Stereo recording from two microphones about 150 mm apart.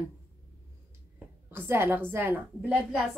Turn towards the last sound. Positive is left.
turn(degrees=-5)  # may be behind; listen again after turning